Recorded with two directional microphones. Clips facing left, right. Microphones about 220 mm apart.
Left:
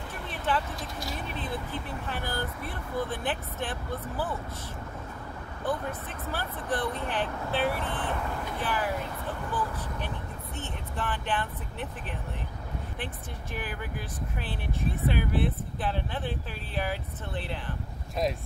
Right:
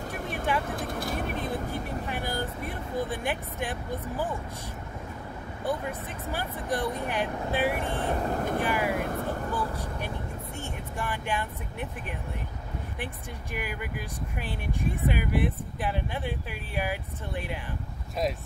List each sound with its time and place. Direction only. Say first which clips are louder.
0.1 s vehicle: right 5 dB; 45° right (ahead or behind)
0.7 s speech: right 5 dB; 55° right (ahead or behind)
1.7 s speech: right 3 dB; 15° right (ahead or behind)
5.7 s speech: right 1 dB; 15° right (ahead or behind)
8.1 s speech: right 5 dB; 40° right (ahead or behind)
8.6 s speech: left 1 dB; 15° right (ahead or behind)
8.9 s vehicle: right 4 dB; 50° right (ahead or behind)
9.5 s speech: right 1 dB; 10° right (ahead or behind)
13.0 s speech: right 1 dB; 15° right (ahead or behind)